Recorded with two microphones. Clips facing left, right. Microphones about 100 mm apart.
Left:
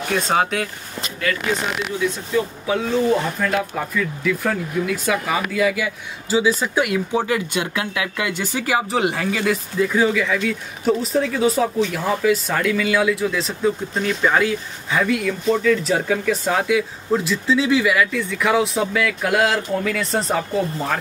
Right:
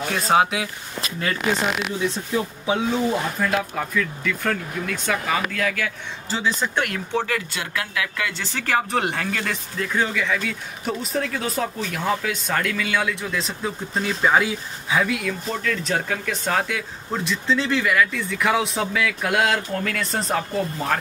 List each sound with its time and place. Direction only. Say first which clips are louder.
0.1 s speech: even; 5° right (ahead or behind)
2.3 s speech: left 3 dB; 20° right (ahead or behind)
3.3 s speech: left 2 dB; centre (ahead or behind)